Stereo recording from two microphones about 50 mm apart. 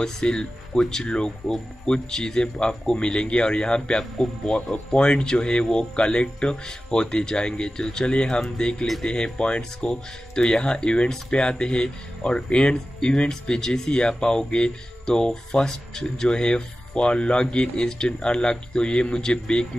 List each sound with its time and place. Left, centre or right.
0.0 s speech: centre